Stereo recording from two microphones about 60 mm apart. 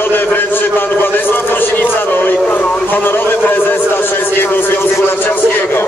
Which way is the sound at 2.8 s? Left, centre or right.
Left.